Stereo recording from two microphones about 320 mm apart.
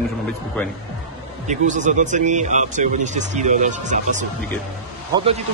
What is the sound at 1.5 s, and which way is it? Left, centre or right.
Speech, right.